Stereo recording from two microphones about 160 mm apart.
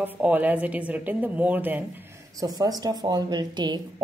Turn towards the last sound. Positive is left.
turn(degrees=-25)  # may be behind; listen again after turning